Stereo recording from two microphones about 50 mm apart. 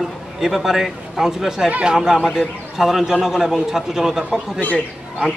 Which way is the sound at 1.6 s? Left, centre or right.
Right.